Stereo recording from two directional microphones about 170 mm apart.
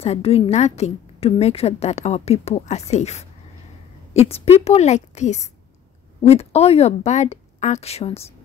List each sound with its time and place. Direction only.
0.0 s a woman's voice: 35° left (ahead or behind)